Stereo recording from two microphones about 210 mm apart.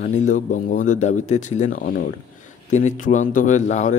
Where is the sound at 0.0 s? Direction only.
35° left (ahead or behind).